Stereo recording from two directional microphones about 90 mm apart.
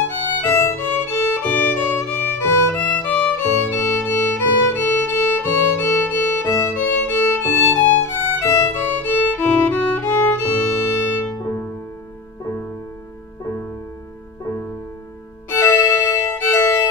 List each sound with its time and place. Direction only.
0.0 s violin: 30° left (ahead or behind)
6.9 s music: 20° left (ahead or behind)
15.5 s music: 35° left (ahead or behind)